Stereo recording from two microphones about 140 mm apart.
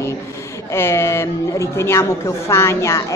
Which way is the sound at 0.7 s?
15° left (ahead or behind).